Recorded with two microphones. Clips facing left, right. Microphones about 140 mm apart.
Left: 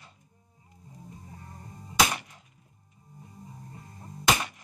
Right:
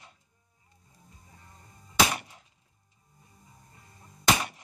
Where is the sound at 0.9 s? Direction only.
35° left (ahead or behind).